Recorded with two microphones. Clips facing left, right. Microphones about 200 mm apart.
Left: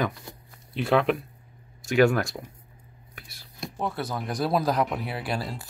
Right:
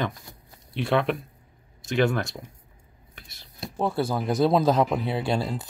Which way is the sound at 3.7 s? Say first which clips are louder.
Right 5 dB; 30° right (ahead or behind).